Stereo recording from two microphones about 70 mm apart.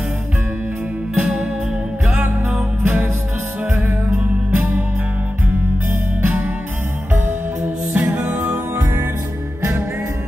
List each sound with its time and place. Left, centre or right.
1.1 s music: right
7.9 s music: centre